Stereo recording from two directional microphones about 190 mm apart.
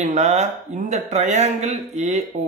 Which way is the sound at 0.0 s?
40° right (ahead or behind).